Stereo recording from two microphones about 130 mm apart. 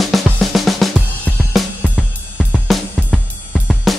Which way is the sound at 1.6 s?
Centre (ahead or behind).